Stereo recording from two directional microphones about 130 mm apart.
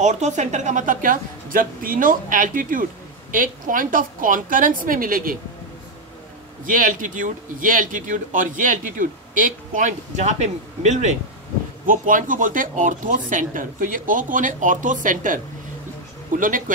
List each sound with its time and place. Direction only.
0.0 s a woman's voice: 65° right (ahead or behind); by 5.4 s 90° right
6.6 s a woman's voice: 90° right; by 11.1 s 60° right (ahead or behind)
11.8 s a woman's voice: 90° right